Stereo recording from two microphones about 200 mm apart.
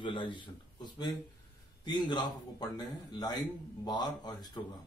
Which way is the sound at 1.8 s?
20° left (ahead or behind).